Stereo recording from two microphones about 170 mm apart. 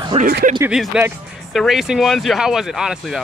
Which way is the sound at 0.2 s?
60° right (ahead or behind).